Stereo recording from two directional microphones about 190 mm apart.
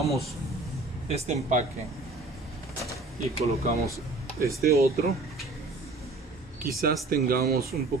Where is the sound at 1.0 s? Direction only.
35° right (ahead or behind).